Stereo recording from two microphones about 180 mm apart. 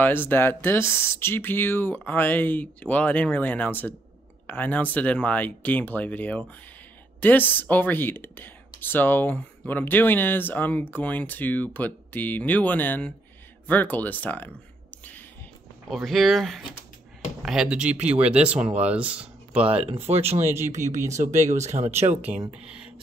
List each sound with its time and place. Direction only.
0.0 s speech: 10° left (ahead or behind)
15.9 s speech: centre (ahead or behind)
19.7 s speech: 35° right (ahead or behind)
22.3 s speech: 10° right (ahead or behind)